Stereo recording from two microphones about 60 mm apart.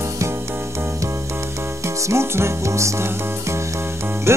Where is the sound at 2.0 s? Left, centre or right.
Right.